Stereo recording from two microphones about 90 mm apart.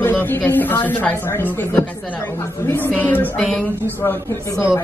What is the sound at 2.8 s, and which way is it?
Speech, 15° left (ahead or behind).